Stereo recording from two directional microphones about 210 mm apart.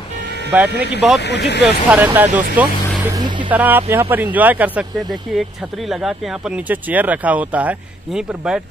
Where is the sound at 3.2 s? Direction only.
20° right (ahead or behind).